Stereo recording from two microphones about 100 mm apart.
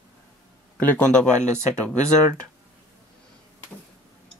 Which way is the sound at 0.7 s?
15° left (ahead or behind).